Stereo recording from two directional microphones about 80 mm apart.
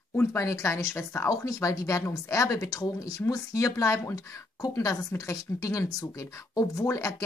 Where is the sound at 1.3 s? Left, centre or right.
Left.